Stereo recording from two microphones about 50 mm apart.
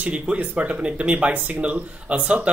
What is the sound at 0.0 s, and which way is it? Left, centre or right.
Speech, right.